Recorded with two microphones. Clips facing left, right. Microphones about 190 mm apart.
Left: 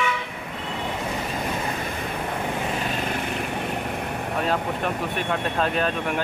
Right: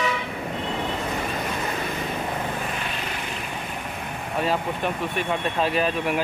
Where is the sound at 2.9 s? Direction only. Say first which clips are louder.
Left 5 dB; 45° left (ahead or behind).